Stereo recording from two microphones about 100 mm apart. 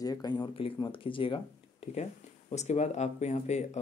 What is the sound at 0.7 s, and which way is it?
Speech, 55° left (ahead or behind).